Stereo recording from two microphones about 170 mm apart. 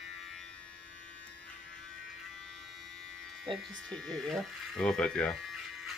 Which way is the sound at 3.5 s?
Centre (ahead or behind).